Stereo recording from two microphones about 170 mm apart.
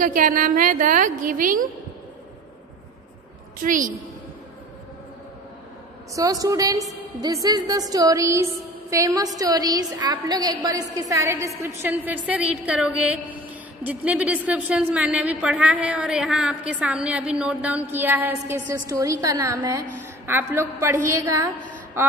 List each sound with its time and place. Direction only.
0.0 s a woman's voice: 55° right (ahead or behind)
3.6 s a woman's voice: 50° right (ahead or behind)
6.1 s a woman's voice: 20° right (ahead or behind)